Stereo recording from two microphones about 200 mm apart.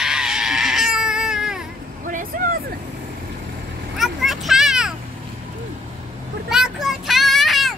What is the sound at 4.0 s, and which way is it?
Vehicle, centre (ahead or behind).